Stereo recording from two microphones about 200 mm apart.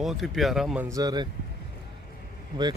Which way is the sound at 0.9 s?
20° right (ahead or behind).